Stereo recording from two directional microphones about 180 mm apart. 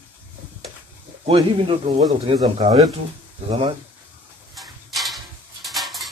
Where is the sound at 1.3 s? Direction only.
30° right (ahead or behind).